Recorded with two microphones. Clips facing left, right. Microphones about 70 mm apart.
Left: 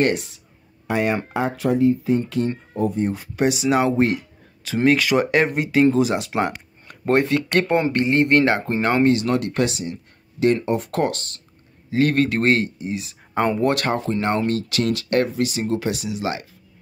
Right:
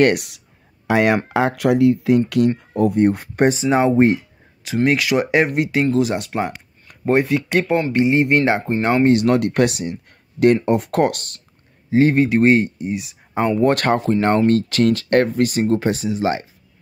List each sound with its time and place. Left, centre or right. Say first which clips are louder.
0.0 s speech: right 5 dB; right
0.8 s speech: right 5 dB; right
3.7 s speech: right 5 dB; right
4.8 s speech: left 1 dB; centre
9.1 s speech: right 5 dB; right
11.9 s a man's voice: right 4 dB; right
12.2 s speech: right 4 dB; centre
13.7 s speech: right 4 dB; right